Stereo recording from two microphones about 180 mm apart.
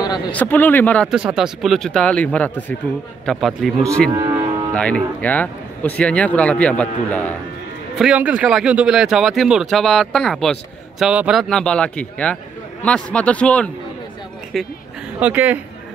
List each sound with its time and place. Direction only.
0.3 s a man's voice: 10° left (ahead or behind)
1.1 s speech: 5° right (ahead or behind)
4.1 s speech: 20° right (ahead or behind)
4.7 s a man's voice: 5° left (ahead or behind)
8.0 s a man's voice: 5° right (ahead or behind)